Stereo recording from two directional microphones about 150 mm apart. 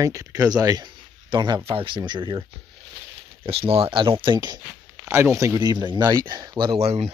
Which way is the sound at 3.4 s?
40° right (ahead or behind).